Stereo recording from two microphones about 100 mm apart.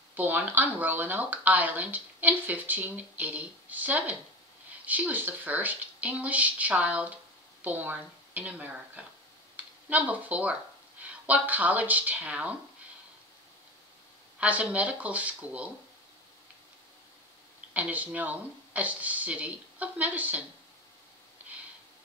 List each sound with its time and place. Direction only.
0.1 s speech: 15° right (ahead or behind)
14.4 s speech: 15° right (ahead or behind)
17.7 s speech: 15° right (ahead or behind)